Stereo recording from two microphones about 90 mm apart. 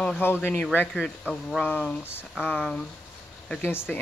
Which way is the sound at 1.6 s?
15° left (ahead or behind).